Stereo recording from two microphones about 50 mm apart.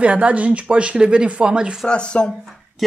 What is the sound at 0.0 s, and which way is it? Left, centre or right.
Speech, right.